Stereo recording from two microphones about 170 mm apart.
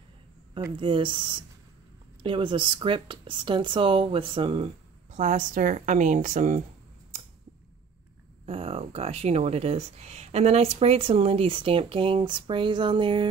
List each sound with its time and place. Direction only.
0.7 s speech: 30° right (ahead or behind)
5.1 s a woman's voice: 50° right (ahead or behind)
8.5 s speech: 35° right (ahead or behind)